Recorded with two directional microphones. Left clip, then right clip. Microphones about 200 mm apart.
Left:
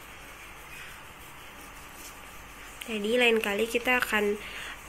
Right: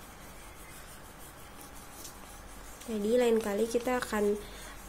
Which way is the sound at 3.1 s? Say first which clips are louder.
Left 3 dB; 10° right (ahead or behind).